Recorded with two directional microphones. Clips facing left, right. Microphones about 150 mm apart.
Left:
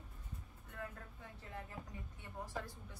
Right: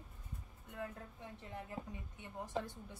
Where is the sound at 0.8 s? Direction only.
15° right (ahead or behind).